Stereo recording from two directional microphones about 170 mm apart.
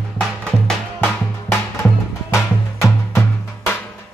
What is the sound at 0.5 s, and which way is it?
Music, 5° left (ahead or behind).